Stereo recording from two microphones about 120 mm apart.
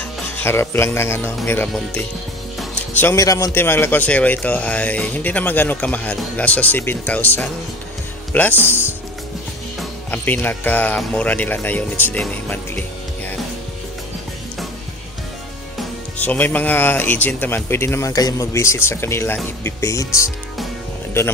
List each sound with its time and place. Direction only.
0.4 s speech: 20° left (ahead or behind)
3.0 s speech: 25° left (ahead or behind)
10.1 s speech: 15° left (ahead or behind)
16.2 s speech: 15° left (ahead or behind)